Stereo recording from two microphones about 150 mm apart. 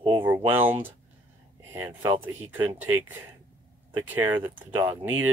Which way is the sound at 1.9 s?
35° right (ahead or behind).